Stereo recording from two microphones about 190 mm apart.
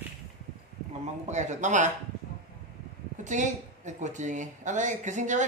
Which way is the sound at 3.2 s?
40° right (ahead or behind).